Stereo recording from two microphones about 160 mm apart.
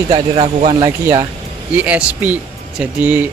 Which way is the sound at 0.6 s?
40° right (ahead or behind).